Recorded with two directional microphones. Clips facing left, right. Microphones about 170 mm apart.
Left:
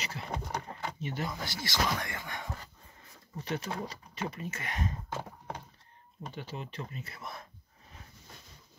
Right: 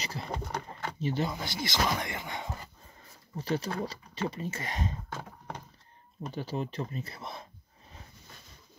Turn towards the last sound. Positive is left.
turn(degrees=-25)  # may be behind; listen again after turning